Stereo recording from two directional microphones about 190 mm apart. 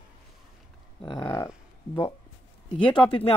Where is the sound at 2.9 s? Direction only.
25° left (ahead or behind).